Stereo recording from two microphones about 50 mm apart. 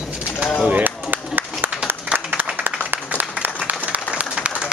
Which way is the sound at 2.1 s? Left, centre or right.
Right.